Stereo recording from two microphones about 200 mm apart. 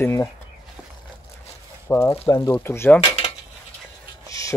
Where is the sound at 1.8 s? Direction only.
10° left (ahead or behind).